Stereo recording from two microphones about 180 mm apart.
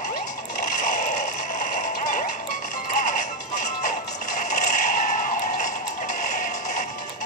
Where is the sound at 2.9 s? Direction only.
45° left (ahead or behind).